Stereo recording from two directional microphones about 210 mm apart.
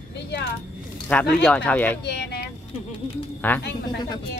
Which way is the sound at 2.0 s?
50° left (ahead or behind).